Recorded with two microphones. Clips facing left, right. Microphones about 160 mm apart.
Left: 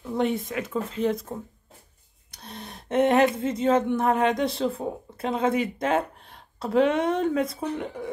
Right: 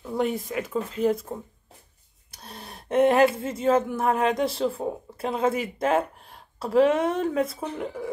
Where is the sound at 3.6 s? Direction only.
5° right (ahead or behind).